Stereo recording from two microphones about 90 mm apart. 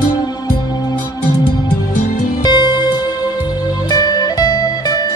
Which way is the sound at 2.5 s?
55° left (ahead or behind).